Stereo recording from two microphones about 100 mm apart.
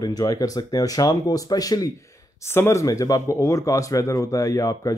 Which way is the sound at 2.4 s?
25° left (ahead or behind).